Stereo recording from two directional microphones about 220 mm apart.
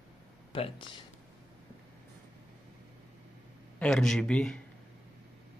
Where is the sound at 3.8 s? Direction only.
Centre (ahead or behind).